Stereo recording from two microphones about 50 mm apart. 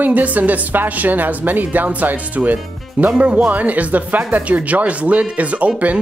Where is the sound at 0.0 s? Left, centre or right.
Right.